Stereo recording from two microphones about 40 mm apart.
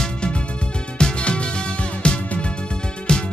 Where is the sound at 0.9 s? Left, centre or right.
Left.